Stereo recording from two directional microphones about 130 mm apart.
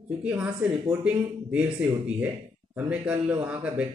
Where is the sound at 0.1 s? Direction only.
15° right (ahead or behind).